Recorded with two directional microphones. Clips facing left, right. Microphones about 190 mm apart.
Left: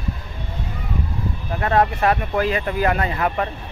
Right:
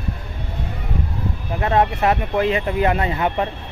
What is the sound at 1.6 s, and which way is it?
Speech, 20° right (ahead or behind).